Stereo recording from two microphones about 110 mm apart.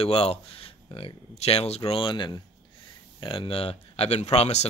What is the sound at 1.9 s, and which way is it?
Speech, 55° left (ahead or behind).